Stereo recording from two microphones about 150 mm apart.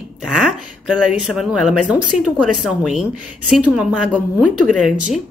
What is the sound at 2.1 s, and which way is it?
Speech, 50° left (ahead or behind).